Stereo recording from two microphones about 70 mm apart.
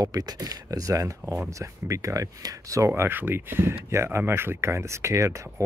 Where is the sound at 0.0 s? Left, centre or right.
Right.